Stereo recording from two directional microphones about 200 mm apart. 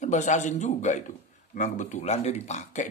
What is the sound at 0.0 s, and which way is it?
A man's voice, 35° left (ahead or behind).